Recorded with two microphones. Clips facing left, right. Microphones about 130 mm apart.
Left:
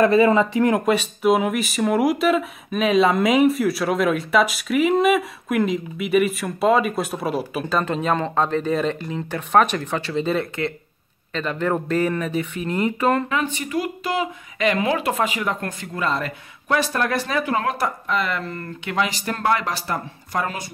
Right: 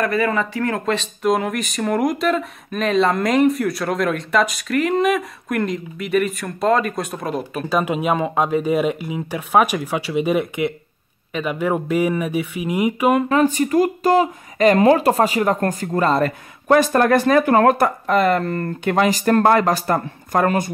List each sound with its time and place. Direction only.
0.0 s speech: 25° left (ahead or behind); by 7.6 s 5° left (ahead or behind)
7.7 s speech: 10° right (ahead or behind)
13.3 s speech: 40° right (ahead or behind)